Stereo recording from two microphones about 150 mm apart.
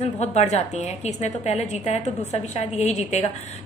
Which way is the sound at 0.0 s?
45° left (ahead or behind).